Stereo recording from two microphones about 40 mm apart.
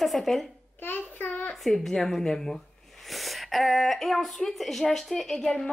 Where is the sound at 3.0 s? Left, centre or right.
Centre.